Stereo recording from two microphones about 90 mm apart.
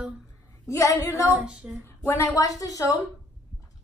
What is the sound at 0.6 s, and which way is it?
Speech, 35° left (ahead or behind).